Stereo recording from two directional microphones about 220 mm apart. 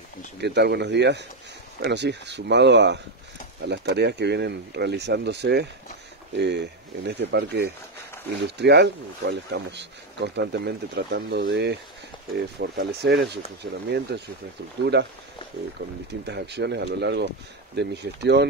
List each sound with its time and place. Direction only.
0.4 s speech: 50° right (ahead or behind)